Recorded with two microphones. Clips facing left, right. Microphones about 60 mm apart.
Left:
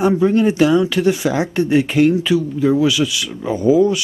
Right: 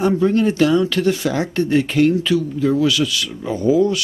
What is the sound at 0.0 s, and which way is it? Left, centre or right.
Speech, centre.